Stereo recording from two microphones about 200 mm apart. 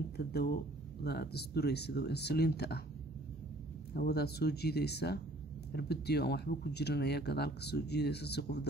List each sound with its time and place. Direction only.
0.2 s speech: 50° left (ahead or behind)
3.9 s speech: 50° left (ahead or behind)